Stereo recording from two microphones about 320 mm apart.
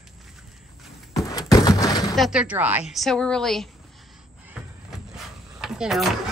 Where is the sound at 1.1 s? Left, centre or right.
Centre.